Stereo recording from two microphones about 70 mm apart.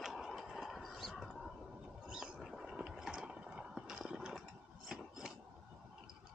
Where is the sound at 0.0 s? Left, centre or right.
Centre.